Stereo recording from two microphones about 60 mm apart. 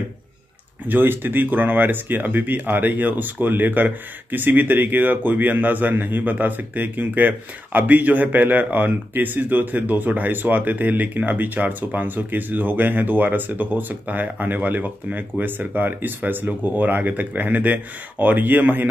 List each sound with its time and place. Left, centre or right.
0.8 s speech: right